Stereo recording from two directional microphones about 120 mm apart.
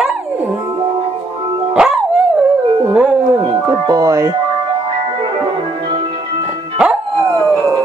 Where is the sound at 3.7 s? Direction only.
25° right (ahead or behind).